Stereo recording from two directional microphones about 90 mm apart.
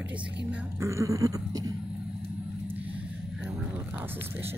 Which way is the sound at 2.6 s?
15° right (ahead or behind).